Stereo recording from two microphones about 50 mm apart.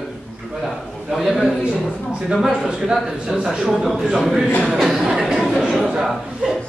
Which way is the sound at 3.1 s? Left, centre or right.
Right.